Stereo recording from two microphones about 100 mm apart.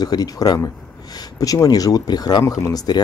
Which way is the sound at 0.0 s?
40° left (ahead or behind).